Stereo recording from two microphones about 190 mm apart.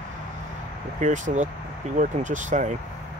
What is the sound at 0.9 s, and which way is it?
Speech, 40° right (ahead or behind).